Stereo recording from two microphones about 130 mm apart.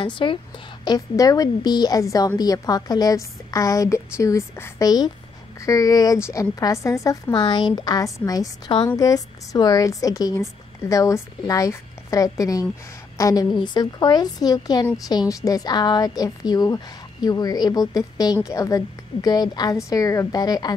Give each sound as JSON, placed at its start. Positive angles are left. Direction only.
{"t": 0.0, "sound": "a woman's voice", "side_deg": 40}
{"t": 0.8, "sound": "a woman's voice", "side_deg": 30}